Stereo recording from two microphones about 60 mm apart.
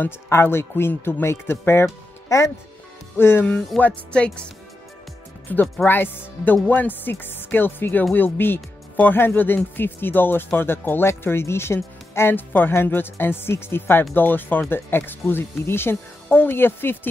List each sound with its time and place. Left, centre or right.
0.3 s a man's voice: left
2.2 s speech: left
3.2 s speech: left
3.7 s speech: centre
4.1 s speech: centre
5.5 s speech: left